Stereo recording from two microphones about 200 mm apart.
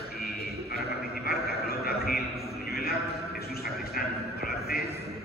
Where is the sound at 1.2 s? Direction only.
50° left (ahead or behind).